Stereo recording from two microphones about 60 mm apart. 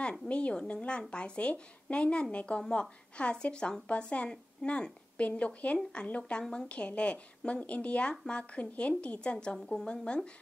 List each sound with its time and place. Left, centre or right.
0.3 s a woman's voice: centre